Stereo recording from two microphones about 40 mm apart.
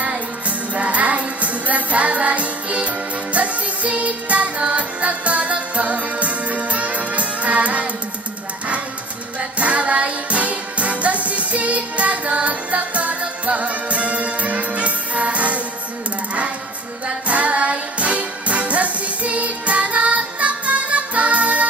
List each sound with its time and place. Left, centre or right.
0.0 s music: right
9.6 s music: right
17.3 s music: right